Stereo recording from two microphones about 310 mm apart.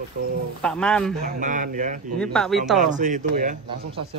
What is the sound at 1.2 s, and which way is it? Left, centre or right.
Speech, right.